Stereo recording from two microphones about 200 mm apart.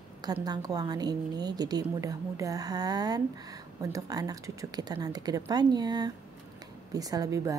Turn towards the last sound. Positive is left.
turn(degrees=-15)  # may be behind; listen again after turning